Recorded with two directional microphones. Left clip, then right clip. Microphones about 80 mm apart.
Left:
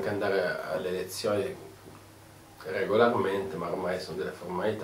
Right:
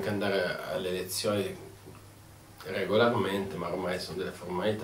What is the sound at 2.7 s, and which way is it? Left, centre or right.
Speech, right.